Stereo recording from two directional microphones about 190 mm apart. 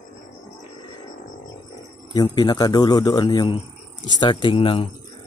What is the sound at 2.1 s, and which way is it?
A man's voice, 20° left (ahead or behind).